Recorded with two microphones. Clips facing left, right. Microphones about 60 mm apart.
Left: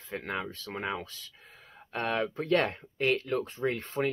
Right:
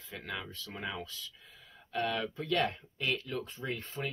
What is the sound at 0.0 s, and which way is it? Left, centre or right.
Speech, left.